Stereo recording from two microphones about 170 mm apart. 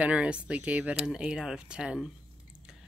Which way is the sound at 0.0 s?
5° right (ahead or behind).